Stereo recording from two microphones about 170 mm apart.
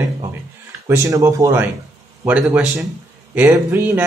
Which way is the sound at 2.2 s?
5° right (ahead or behind).